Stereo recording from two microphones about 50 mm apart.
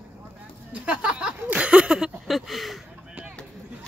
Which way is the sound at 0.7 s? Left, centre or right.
Right.